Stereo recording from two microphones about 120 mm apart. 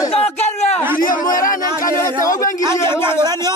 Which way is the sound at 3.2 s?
35° right (ahead or behind).